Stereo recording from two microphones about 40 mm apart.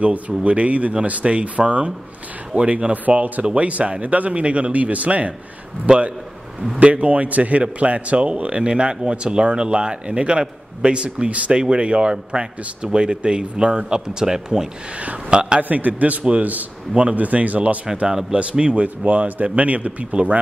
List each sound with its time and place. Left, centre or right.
0.4 s a man's voice: right
11.2 s a man's voice: right; by 14.7 s centre
15.0 s a man's voice: right
18.0 s a man's voice: right